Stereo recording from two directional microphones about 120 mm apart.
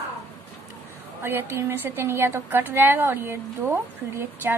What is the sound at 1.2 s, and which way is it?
A woman's voice, 20° right (ahead or behind).